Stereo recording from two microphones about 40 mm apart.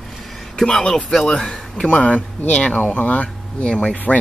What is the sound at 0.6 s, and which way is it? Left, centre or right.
Speech, left.